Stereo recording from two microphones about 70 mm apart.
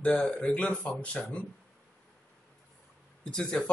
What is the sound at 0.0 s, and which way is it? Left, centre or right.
Speech, centre.